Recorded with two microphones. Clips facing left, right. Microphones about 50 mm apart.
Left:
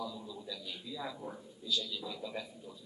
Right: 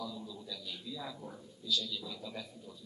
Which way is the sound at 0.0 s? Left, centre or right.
Centre.